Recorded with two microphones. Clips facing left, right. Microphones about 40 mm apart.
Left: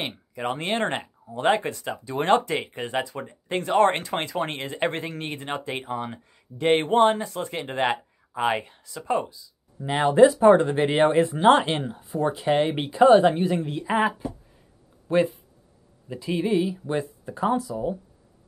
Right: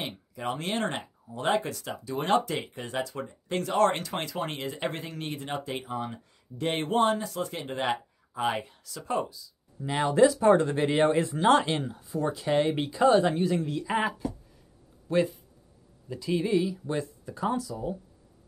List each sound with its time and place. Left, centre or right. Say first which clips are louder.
0.6 s speech: left 5 dB; left
8.8 s speech: left 4 dB; left